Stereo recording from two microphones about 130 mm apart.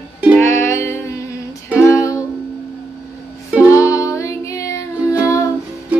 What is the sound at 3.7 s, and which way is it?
Music, 25° left (ahead or behind).